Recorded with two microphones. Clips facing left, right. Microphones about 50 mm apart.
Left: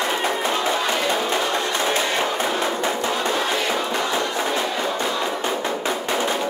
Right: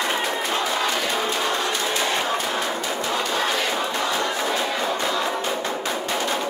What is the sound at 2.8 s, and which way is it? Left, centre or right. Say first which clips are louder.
Music: left 3 dB; left.